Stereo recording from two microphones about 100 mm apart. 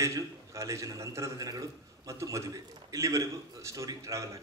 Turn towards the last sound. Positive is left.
turn(degrees=-30)  # may be behind; listen again after turning